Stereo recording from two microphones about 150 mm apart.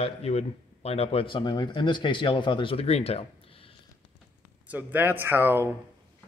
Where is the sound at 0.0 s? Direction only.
45° left (ahead or behind).